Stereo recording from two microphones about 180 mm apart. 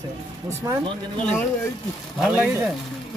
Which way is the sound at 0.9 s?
30° right (ahead or behind).